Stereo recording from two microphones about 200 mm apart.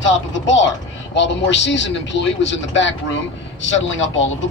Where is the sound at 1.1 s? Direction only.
65° left (ahead or behind).